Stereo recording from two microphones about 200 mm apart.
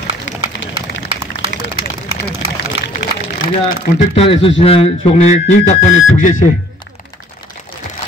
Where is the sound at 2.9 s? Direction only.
50° left (ahead or behind).